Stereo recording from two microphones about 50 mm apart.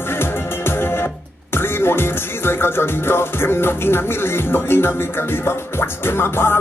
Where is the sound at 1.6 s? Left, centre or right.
Left.